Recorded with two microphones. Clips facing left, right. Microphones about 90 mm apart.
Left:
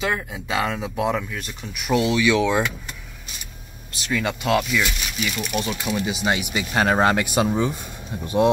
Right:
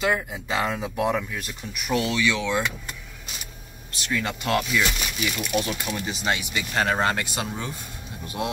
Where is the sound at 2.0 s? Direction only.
15° left (ahead or behind).